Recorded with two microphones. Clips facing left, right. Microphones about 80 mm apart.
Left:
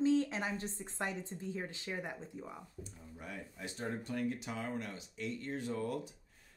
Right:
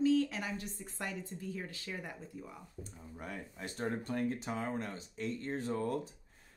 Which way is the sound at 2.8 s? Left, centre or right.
Right.